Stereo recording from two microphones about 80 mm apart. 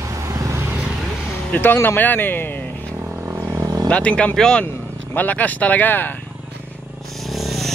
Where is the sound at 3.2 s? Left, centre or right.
Right.